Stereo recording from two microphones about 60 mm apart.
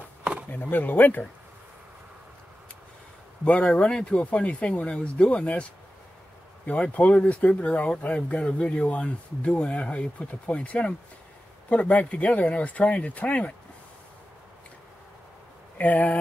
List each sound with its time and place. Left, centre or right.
0.5 s speech: left
3.4 s speech: left
15.8 s speech: left